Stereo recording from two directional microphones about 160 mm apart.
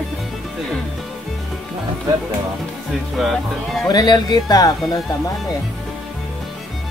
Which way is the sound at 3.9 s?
25° left (ahead or behind).